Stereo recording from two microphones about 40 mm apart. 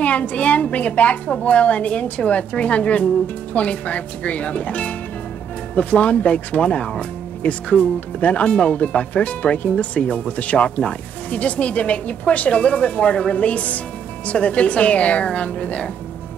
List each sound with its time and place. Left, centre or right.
0.0 s speech: left